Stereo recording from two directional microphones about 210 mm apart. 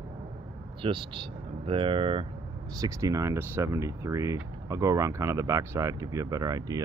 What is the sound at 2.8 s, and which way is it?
Speech, 15° right (ahead or behind).